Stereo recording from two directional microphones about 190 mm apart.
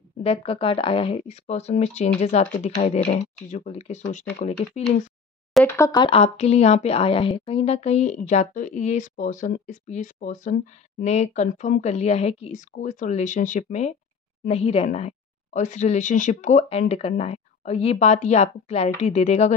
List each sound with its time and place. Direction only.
0.2 s a woman's voice: 30° left (ahead or behind)
5.5 s a sound: 10° left (ahead or behind)
5.9 s a woman's voice: 25° left (ahead or behind)